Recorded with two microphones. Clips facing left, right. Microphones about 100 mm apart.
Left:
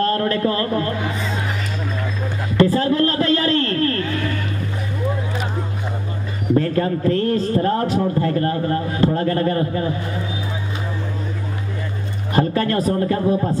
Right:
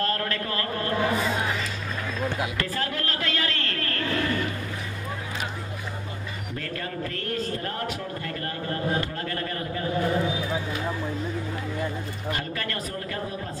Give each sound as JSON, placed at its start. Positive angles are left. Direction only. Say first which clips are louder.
{"t": 0.0, "sound": "a man's voice", "louder": "left 9 dB", "side_deg": 30}
{"t": 2.5, "sound": "a sound", "louder": "left 13 dB", "side_deg": 30}
{"t": 6.5, "sound": "a man's voice", "louder": "left 16 dB", "side_deg": 30}
{"t": 12.4, "sound": "a man's voice", "louder": "left 13 dB", "side_deg": 30}